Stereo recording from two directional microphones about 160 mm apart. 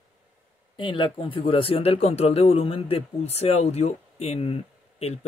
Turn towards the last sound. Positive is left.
turn(degrees=40)  # may be behind; listen again after turning